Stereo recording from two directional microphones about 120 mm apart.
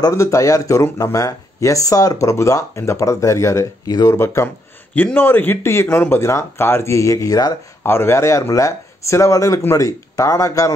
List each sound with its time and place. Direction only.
0.0 s speech: 25° left (ahead or behind)
4.9 s speech: 15° left (ahead or behind); by 7.5 s 30° left (ahead or behind)
7.8 s speech: 20° left (ahead or behind)